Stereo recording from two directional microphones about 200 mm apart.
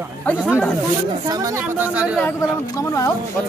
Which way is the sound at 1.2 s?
20° right (ahead or behind).